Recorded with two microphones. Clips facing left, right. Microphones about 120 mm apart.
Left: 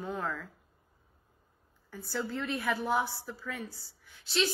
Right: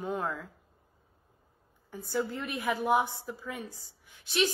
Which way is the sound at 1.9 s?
15° right (ahead or behind).